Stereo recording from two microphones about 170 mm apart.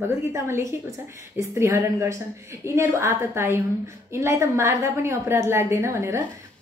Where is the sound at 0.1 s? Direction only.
15° right (ahead or behind).